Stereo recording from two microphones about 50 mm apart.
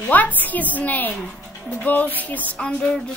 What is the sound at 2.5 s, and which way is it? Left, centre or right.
Music, centre.